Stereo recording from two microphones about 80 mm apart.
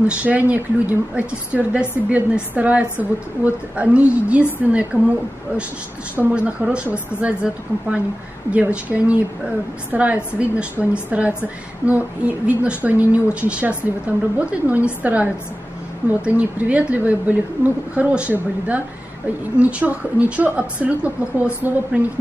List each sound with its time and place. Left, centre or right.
0.0 s a woman's voice: centre
6.3 s a woman's voice: centre